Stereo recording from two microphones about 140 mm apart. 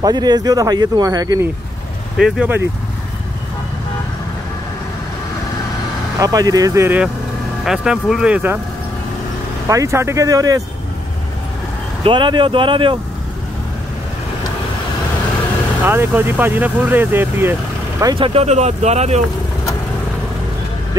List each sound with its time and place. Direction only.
0.0 s speech: 30° right (ahead or behind)
2.1 s speech: 5° right (ahead or behind)
6.1 s speech: 25° right (ahead or behind)
7.6 s speech: 5° right (ahead or behind)
9.7 s speech: 20° right (ahead or behind)
12.0 s speech: 35° right (ahead or behind)
15.8 s speech: 15° right (ahead or behind)
18.1 s speech: 45° right (ahead or behind)